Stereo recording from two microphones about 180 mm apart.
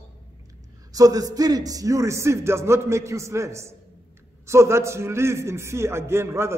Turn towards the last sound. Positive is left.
turn(degrees=-15)  # may be behind; listen again after turning